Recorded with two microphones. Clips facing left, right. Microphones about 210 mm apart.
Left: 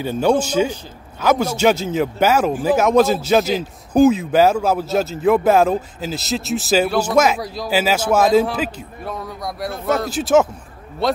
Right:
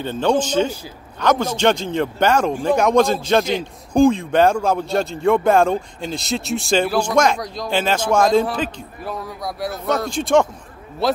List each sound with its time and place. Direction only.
0.0 s a man's voice: 10° left (ahead or behind)